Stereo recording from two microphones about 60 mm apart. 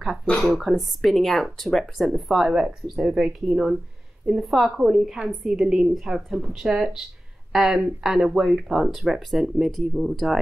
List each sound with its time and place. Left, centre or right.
0.0 s a woman's voice: centre